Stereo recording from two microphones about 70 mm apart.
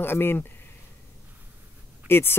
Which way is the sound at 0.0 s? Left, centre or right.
Left.